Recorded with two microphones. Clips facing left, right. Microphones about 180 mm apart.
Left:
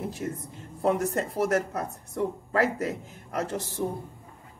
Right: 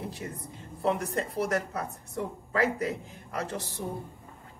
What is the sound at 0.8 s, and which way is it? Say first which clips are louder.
Speech: left 3 dB; 45° left (ahead or behind).